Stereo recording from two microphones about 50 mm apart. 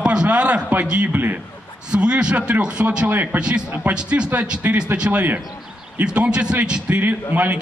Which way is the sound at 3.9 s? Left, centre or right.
Centre.